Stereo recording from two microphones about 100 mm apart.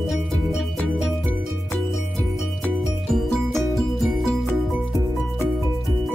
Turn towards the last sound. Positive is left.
turn(degrees=0)  # may be behind; listen again after turning